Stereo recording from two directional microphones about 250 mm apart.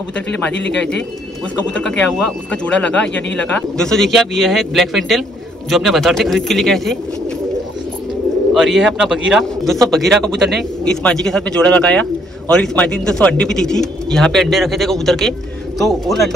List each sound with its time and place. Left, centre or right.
0.1 s speech: centre
1.7 s speech: centre
8.5 s speech: centre